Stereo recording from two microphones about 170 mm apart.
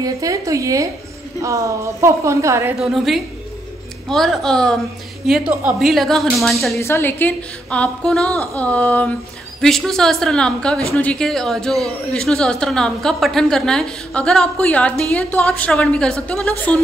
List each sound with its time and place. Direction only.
0.0 s a woman's voice: 20° right (ahead or behind)
2.8 s a woman's voice: centre (ahead or behind)
6.8 s a woman's voice: 15° left (ahead or behind)